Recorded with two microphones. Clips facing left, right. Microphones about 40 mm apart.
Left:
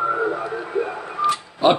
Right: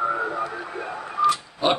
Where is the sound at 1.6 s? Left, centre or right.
Centre.